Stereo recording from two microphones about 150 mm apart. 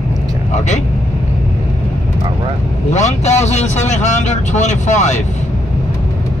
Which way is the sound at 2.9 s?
50° left (ahead or behind).